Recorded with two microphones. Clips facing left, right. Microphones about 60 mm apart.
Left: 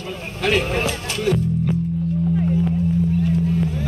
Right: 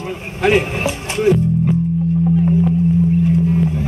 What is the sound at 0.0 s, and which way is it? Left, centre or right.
Music, right.